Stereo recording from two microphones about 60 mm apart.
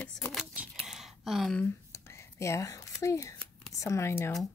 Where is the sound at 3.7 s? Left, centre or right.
Left.